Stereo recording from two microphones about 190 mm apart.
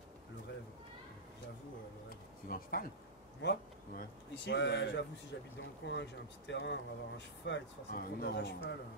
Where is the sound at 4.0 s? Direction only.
65° left (ahead or behind).